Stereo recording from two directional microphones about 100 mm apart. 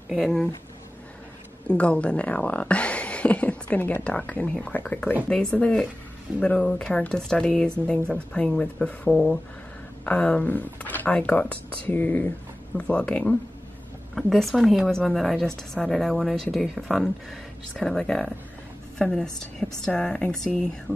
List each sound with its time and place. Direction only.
0.1 s a woman's voice: centre (ahead or behind)
1.7 s speech: 10° left (ahead or behind)
14.1 s a woman's voice: centre (ahead or behind)